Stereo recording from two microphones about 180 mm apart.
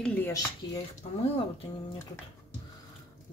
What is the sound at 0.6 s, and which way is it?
Speech, 20° left (ahead or behind).